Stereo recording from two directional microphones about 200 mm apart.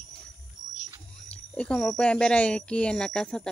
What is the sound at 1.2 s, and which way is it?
Speech, 5° left (ahead or behind).